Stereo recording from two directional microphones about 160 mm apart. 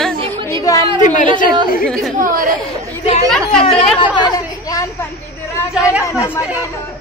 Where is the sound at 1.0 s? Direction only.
50° left (ahead or behind).